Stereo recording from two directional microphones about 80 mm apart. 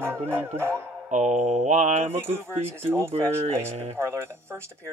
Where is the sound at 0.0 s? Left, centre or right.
Right.